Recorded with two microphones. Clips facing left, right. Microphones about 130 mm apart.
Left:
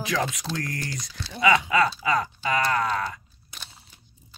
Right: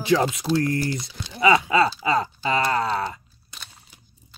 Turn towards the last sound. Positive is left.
turn(degrees=-30)  # may be behind; listen again after turning